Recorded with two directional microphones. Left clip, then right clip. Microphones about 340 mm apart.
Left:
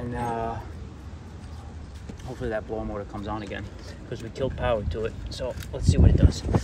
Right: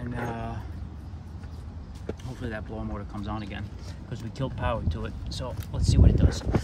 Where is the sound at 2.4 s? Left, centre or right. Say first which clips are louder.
Left 10 dB; centre.